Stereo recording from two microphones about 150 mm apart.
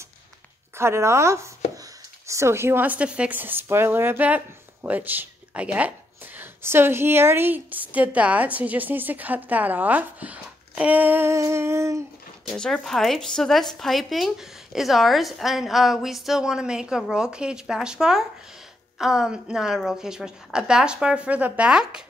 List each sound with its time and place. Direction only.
0.7 s speech: 20° right (ahead or behind)
12.4 s a woman's voice: 5° left (ahead or behind)